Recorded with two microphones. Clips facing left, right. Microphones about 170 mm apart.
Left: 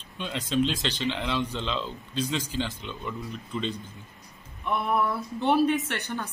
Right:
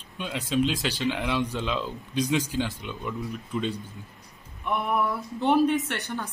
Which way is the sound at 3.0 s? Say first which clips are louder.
Right 4 dB; centre (ahead or behind).